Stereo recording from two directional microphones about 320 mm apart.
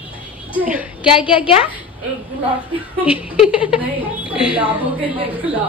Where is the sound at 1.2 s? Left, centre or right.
Centre.